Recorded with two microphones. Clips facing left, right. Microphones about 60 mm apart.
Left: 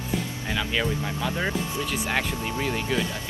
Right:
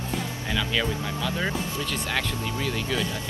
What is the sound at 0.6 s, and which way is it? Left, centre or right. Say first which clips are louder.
Speech: even; centre.